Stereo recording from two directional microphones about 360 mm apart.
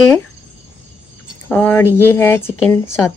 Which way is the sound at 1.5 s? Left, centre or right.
Centre.